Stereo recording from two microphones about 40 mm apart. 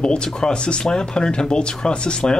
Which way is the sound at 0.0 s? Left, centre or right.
Left.